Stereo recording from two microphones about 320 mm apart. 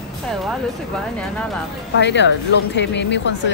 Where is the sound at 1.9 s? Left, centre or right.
Left.